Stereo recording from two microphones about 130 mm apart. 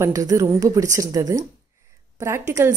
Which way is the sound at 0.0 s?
25° right (ahead or behind).